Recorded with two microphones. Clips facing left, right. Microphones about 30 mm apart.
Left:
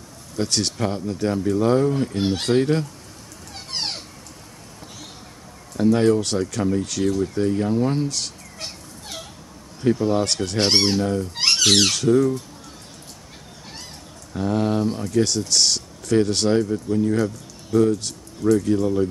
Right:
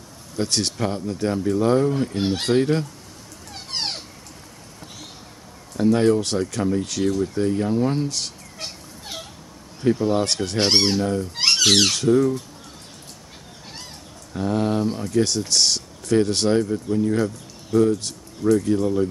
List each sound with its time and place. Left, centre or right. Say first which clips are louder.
0.4 s speech: even; centre
3.5 s a sound: even; centre
5.8 s speech: even; centre
14.3 s speech: even; centre